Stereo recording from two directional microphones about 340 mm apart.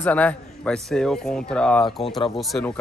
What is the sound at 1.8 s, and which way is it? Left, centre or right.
Speech, centre.